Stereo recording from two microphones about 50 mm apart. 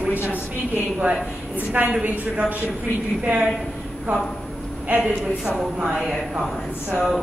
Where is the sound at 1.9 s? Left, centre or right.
Right.